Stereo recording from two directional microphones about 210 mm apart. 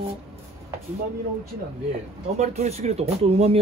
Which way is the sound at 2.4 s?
30° right (ahead or behind).